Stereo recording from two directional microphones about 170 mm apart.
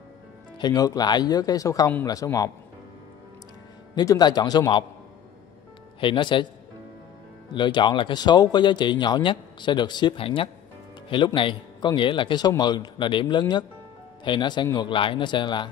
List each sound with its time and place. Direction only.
0.6 s speech: 25° left (ahead or behind)
3.9 s speech: 20° left (ahead or behind)
5.9 s speech: 30° left (ahead or behind)
7.5 s speech: 25° left (ahead or behind)